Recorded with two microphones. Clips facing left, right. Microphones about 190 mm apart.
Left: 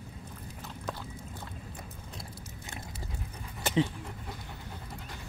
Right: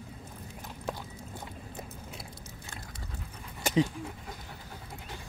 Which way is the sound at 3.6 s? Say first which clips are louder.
Right 1 dB; 5° right (ahead or behind).